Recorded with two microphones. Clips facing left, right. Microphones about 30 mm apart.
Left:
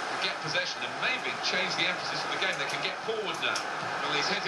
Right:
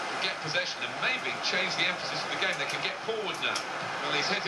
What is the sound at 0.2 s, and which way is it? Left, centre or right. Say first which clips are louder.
Speech: even; centre.